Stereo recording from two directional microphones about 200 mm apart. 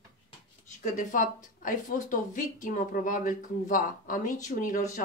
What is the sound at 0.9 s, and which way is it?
A woman's voice, 40° left (ahead or behind).